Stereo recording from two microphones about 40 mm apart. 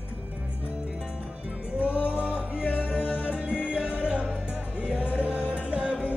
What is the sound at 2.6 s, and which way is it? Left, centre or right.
Music, left.